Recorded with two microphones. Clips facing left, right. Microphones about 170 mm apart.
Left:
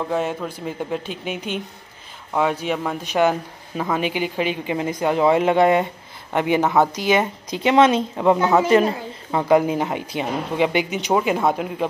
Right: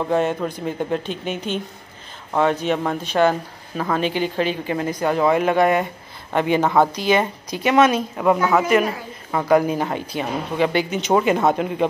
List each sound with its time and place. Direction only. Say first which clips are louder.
0.0 s speech: right 3 dB; centre (ahead or behind)
11.1 s speech: right 2 dB; 5° left (ahead or behind)